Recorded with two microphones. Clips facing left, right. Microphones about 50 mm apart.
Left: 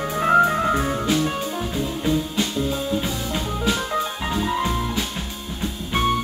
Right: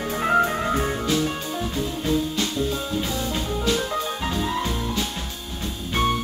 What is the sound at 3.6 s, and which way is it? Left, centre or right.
Music, centre.